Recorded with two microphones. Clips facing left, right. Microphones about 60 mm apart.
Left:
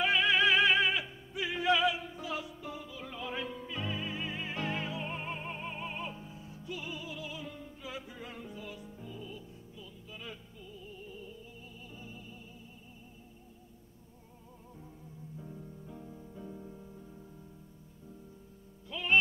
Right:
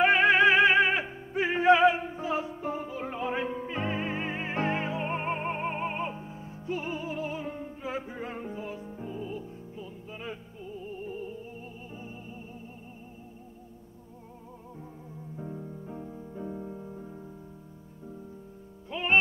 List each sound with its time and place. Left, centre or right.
0.0 s music: right
15.3 s keyboard: right
18.9 s music: right